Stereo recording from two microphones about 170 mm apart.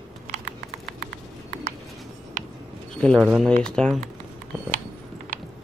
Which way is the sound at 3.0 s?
5° left (ahead or behind).